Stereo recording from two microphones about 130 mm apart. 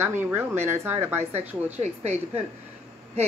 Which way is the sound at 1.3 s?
55° right (ahead or behind).